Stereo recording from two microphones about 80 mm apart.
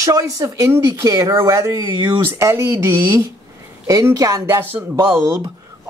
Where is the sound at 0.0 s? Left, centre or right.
Right.